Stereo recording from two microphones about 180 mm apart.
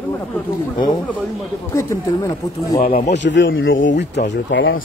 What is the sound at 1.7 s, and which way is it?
Speech, 15° left (ahead or behind).